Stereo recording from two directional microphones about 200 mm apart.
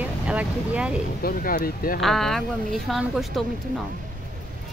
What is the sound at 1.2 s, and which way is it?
Speech, 50° left (ahead or behind).